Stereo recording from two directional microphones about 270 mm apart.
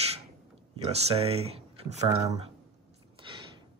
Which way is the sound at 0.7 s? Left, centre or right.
Right.